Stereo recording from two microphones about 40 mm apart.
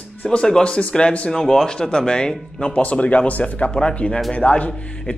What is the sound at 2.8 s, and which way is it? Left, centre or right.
Speech, left.